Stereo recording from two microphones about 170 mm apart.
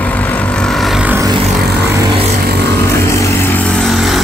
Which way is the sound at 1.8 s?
20° right (ahead or behind).